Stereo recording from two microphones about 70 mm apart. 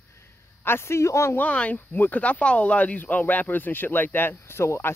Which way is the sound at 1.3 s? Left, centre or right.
Left.